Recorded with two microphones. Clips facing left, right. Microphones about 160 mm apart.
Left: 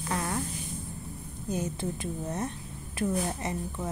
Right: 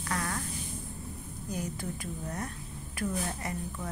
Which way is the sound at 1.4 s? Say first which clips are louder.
Left 5 dB; 25° left (ahead or behind).